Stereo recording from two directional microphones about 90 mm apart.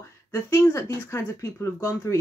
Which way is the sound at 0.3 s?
30° left (ahead or behind).